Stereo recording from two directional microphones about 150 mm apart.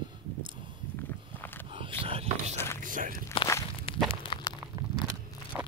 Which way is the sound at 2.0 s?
40° right (ahead or behind).